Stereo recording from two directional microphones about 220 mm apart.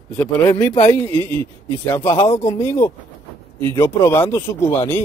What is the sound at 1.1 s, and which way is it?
Speech, 25° right (ahead or behind).